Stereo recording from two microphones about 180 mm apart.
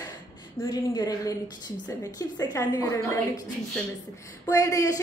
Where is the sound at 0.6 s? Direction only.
20° left (ahead or behind).